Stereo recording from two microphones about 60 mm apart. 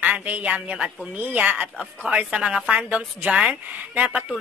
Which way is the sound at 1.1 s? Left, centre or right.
Right.